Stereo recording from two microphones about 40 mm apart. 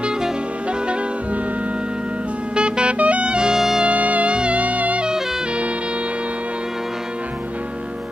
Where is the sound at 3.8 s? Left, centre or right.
Right.